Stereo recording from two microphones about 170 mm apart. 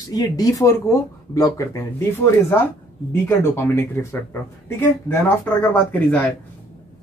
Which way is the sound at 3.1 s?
15° left (ahead or behind).